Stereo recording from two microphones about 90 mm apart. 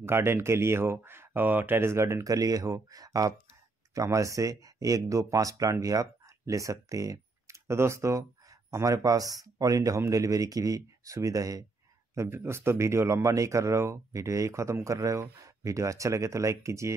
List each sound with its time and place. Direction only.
0.0 s speech: 30° right (ahead or behind)
12.2 s speech: 25° right (ahead or behind)